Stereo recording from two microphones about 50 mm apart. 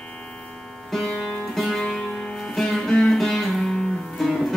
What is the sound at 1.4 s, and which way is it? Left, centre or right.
Music, centre.